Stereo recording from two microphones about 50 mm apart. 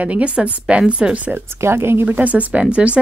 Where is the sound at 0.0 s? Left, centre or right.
Right.